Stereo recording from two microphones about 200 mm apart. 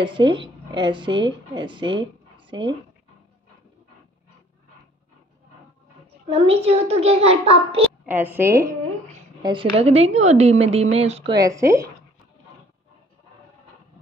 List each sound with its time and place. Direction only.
0.0 s speech: 25° right (ahead or behind)
6.2 s a woman's voice: 30° right (ahead or behind)
8.0 s a woman's voice: 10° right (ahead or behind)
9.4 s a woman's voice: 25° right (ahead or behind)
11.3 s a woman's voice: 15° right (ahead or behind)